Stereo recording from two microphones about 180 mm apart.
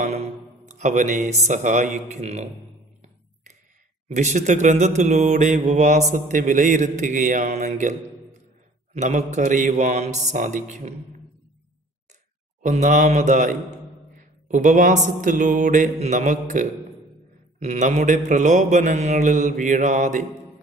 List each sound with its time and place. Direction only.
0.7 s a man's voice: 40° right (ahead or behind)
4.1 s a man's voice: 40° right (ahead or behind)
6.1 s mantra: 45° right (ahead or behind)
8.9 s a man's voice: 40° right (ahead or behind)
12.6 s mantra: 40° right (ahead or behind)
17.6 s mantra: 40° right (ahead or behind)